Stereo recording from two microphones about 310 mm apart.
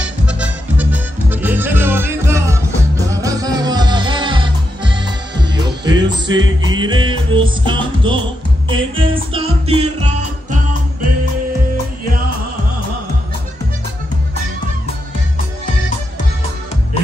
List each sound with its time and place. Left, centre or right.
0.0 s music: centre